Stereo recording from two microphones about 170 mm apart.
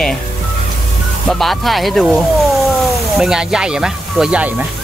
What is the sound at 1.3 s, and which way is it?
Speech, centre (ahead or behind).